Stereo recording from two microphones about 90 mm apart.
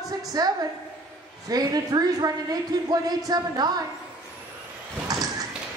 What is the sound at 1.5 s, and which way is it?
A woman's voice, 45° right (ahead or behind).